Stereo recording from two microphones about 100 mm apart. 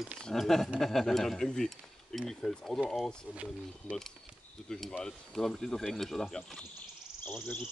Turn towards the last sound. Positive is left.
turn(degrees=20)  # may be behind; listen again after turning